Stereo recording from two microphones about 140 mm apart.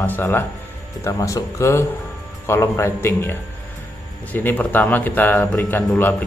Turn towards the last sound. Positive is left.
turn(degrees=15)  # may be behind; listen again after turning